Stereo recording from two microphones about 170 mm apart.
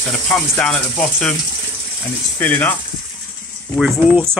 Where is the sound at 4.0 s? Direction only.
10° right (ahead or behind).